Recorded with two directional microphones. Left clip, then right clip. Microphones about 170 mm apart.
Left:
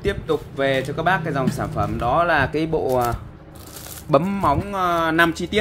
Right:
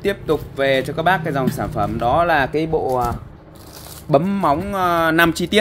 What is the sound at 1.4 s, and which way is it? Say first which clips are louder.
Speech: right 2 dB; 30° right (ahead or behind).